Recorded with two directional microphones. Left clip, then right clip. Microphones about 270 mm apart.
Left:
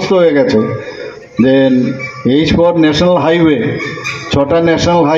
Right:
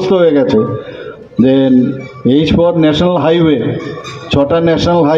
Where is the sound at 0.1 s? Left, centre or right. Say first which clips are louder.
Left 1 dB; right.